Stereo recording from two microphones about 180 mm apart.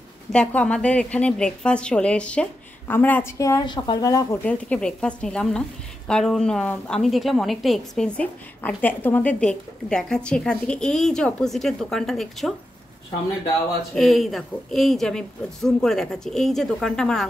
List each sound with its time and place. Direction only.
0.3 s a woman's voice: 5° left (ahead or behind)
4.5 s a woman's voice: 5° left (ahead or behind)
13.9 s a woman's voice: centre (ahead or behind)